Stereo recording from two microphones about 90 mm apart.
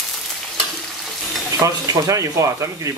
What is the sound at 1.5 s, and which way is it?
Speech, 40° right (ahead or behind).